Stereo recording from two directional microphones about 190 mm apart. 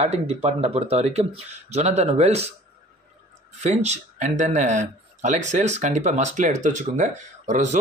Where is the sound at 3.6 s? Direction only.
35° right (ahead or behind).